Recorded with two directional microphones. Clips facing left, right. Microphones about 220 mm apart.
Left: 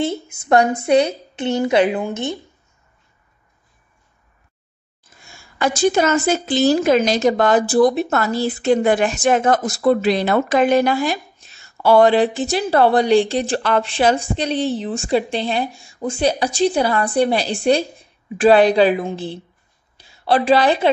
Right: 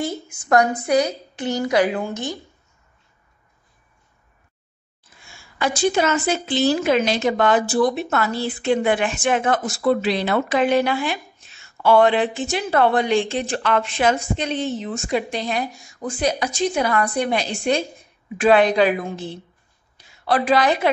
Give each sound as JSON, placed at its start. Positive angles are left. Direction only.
{"t": 0.0, "sound": "a woman's voice", "side_deg": 25}
{"t": 5.2, "sound": "a woman's voice", "side_deg": 45}